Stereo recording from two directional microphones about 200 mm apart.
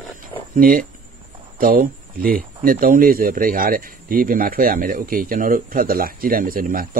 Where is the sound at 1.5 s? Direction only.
45° right (ahead or behind).